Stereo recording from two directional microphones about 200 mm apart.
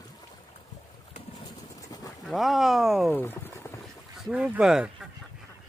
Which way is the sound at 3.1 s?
10° left (ahead or behind).